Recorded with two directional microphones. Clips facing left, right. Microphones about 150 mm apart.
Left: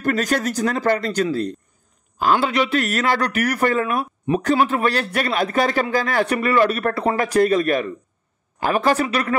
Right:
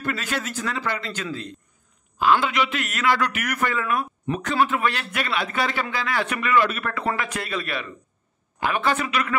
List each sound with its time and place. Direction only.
0.0 s a man's voice: 40° left (ahead or behind)